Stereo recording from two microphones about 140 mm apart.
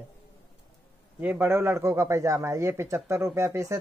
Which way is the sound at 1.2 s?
15° right (ahead or behind).